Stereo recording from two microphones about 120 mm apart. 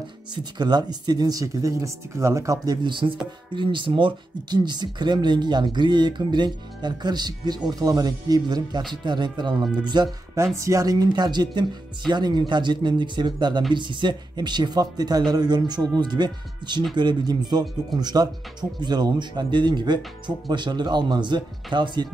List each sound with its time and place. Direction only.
0.3 s speech: 35° right (ahead or behind)
10.3 s speech: 25° right (ahead or behind)